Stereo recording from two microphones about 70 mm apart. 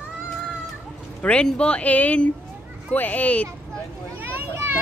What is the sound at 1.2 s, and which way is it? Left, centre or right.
Speech, centre.